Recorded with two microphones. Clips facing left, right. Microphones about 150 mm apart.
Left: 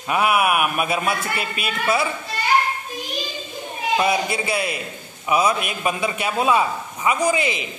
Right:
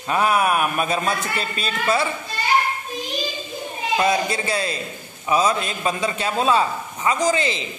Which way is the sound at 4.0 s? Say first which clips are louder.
Right 2 dB; 15° left (ahead or behind).